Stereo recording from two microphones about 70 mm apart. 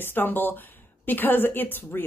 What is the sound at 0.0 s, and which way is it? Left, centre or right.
A woman's voice, left.